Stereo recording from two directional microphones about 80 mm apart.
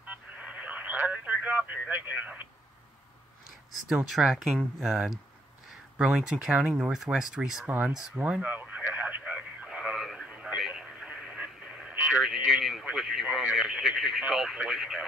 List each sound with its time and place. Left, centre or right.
0.0 s radio: centre
3.9 s speech: centre
8.2 s radio: centre
11.9 s a sound: right
12.4 s speech: centre